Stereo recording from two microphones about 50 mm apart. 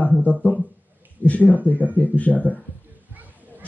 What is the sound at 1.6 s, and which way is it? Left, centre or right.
Speech, right.